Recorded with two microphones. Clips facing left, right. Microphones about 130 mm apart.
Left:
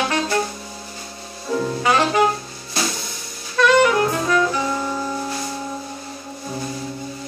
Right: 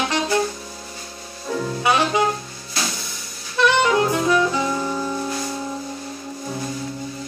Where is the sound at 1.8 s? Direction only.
15° right (ahead or behind).